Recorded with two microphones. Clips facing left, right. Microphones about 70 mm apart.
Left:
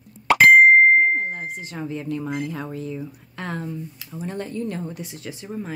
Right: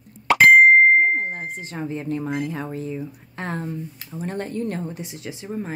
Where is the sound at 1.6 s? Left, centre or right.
Right.